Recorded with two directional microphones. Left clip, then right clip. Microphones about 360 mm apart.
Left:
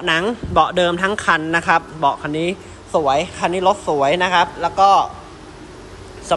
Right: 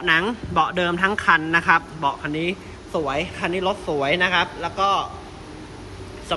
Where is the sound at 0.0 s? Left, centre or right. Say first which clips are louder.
Left 1 dB; centre.